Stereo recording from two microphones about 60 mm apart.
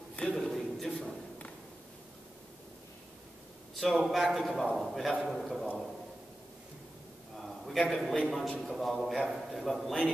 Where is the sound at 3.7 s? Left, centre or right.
Centre.